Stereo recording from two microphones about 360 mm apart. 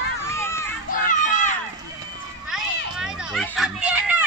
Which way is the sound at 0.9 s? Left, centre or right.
Left.